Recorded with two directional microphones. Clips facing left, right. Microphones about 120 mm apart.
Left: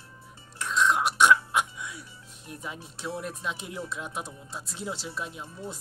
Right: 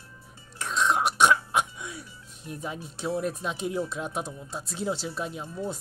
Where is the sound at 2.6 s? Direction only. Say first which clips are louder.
Right 5 dB; 40° right (ahead or behind).